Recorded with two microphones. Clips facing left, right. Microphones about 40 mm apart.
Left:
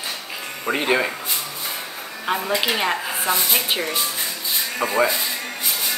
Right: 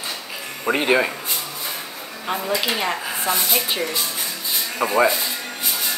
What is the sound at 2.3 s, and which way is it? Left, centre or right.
A woman's voice, centre.